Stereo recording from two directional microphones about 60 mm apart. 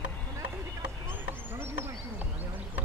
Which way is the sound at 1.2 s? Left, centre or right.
Right.